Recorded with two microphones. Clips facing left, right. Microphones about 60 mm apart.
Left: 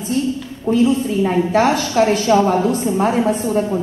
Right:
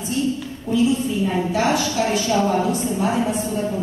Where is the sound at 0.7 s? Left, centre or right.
Left.